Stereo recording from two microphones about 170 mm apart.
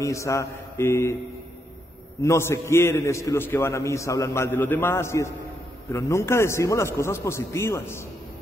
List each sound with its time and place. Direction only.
0.0 s a man's voice: 15° left (ahead or behind)
2.2 s a man's voice: 15° left (ahead or behind)